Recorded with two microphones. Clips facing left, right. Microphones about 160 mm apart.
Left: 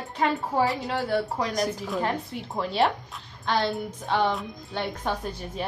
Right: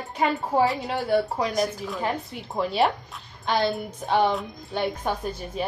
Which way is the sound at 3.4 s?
15° right (ahead or behind).